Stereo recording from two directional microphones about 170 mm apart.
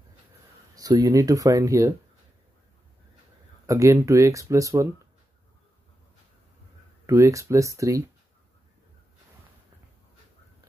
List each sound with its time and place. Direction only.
0.7 s speech: 20° right (ahead or behind)
3.6 s speech: 20° right (ahead or behind)
7.1 s speech: 20° right (ahead or behind)